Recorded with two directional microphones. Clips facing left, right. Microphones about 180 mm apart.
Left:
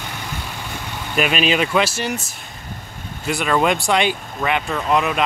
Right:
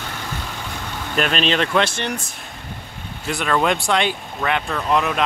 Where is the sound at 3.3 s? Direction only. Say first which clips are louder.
Left 1 dB; 5° left (ahead or behind).